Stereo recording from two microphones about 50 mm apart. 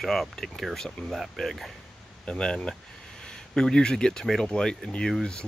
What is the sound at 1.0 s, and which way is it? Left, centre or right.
Speech, centre.